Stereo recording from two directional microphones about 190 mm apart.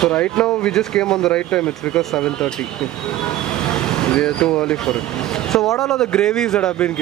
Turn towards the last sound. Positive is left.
turn(degrees=5)  # may be behind; listen again after turning